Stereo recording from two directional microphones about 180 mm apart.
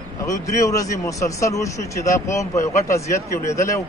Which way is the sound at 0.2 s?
15° left (ahead or behind).